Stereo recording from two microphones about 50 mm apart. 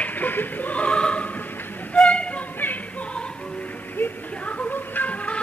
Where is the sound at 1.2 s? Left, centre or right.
Left.